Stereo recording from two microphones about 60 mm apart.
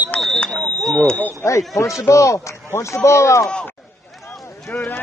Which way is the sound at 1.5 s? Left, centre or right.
Left.